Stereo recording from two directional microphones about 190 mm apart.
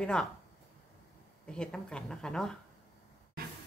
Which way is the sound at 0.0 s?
5° left (ahead or behind).